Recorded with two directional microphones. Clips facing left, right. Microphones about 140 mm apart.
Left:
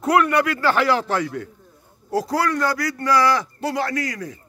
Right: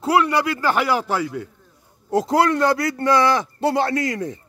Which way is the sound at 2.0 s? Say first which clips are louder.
Right 4 dB; 20° right (ahead or behind).